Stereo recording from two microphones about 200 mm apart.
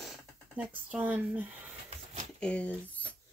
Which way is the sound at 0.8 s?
5° right (ahead or behind).